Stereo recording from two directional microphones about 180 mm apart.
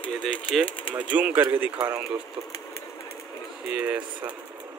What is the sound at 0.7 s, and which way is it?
Speech, 30° left (ahead or behind).